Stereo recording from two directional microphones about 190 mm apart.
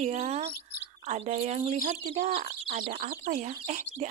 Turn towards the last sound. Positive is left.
turn(degrees=-40)  # may be behind; listen again after turning